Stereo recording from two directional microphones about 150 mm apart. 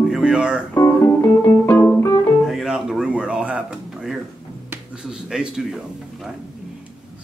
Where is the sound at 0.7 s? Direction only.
20° left (ahead or behind).